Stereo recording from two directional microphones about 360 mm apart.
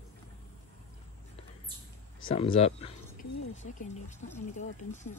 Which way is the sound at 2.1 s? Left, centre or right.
Centre.